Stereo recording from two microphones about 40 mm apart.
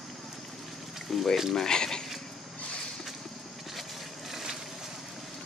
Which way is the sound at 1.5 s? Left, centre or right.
Centre.